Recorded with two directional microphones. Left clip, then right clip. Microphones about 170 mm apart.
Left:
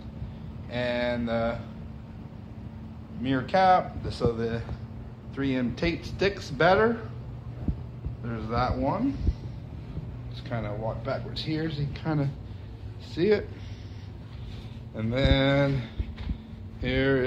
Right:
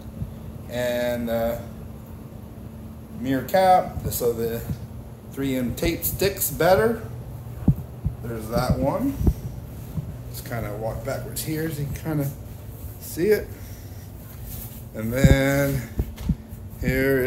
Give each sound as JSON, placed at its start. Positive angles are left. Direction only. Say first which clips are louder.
{"t": 0.7, "sound": "mantra", "louder": "right 4 dB", "side_deg": -20}
{"t": 3.3, "sound": "speech", "louder": "right 3 dB", "side_deg": -25}
{"t": 8.3, "sound": "a man's voice", "louder": "right 3 dB", "side_deg": 0}
{"t": 10.5, "sound": "a man's voice", "louder": "right 3 dB", "side_deg": 0}
{"t": 15.0, "sound": "speech", "louder": "right 4 dB", "side_deg": -25}
{"t": 16.8, "sound": "speech", "louder": "right 3 dB", "side_deg": -20}